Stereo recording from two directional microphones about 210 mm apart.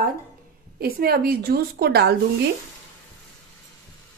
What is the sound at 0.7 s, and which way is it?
A woman's voice, 45° right (ahead or behind).